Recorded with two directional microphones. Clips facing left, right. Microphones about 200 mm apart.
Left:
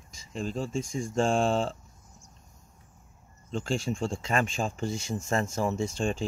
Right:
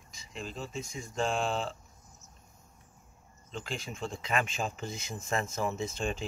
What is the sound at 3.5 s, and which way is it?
Speech, 45° left (ahead or behind).